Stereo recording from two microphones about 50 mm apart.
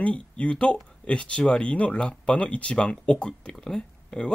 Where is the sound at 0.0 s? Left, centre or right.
Left.